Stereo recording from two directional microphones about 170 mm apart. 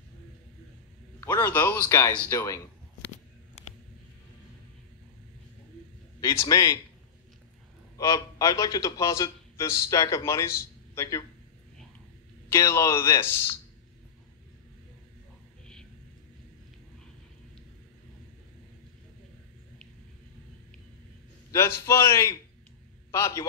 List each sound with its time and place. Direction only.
1.2 s a man's voice: 10° left (ahead or behind)
6.2 s a man's voice: 20° left (ahead or behind)
8.0 s a man's voice: 20° left (ahead or behind)
12.4 s a man's voice: 15° left (ahead or behind)
21.5 s a man's voice: 15° left (ahead or behind)